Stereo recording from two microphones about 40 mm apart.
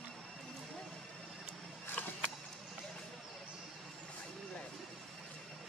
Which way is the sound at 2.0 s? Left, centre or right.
Left.